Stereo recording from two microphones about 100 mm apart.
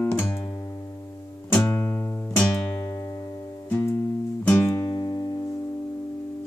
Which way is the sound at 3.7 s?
20° left (ahead or behind).